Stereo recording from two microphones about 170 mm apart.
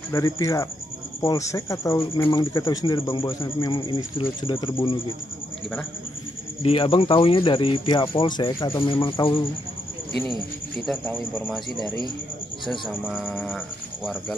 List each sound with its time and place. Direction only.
0.1 s speech: 20° left (ahead or behind)
6.6 s speech: 30° left (ahead or behind)
11.1 s speech: 10° left (ahead or behind)